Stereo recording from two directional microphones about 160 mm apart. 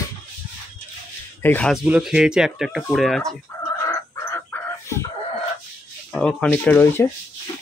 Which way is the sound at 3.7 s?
15° left (ahead or behind).